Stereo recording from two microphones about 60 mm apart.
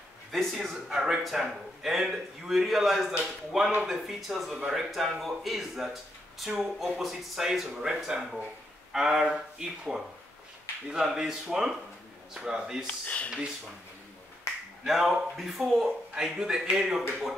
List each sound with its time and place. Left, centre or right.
0.3 s speech: centre
0.8 s speech: centre
12.8 s speech: left
14.9 s speech: centre